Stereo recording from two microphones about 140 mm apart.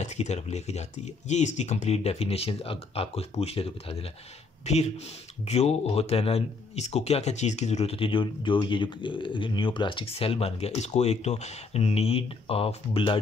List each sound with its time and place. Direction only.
0.0 s speech: 50° left (ahead or behind)